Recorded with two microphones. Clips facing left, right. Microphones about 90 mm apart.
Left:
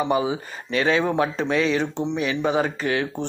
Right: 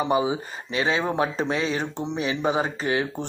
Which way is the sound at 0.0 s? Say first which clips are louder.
Even; 25° right (ahead or behind).